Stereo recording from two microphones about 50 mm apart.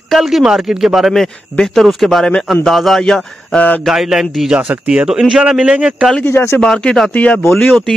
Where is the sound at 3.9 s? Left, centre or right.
Centre; by 6.1 s right.